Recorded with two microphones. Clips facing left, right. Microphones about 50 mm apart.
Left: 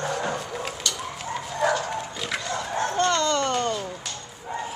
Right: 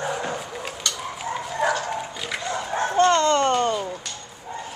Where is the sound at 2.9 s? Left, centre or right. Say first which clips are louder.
Right 6 dB; right.